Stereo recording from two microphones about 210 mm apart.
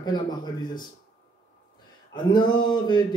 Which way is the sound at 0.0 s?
20° left (ahead or behind).